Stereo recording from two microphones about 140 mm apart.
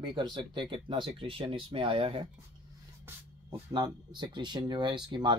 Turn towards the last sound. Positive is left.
turn(degrees=-30)  # may be behind; listen again after turning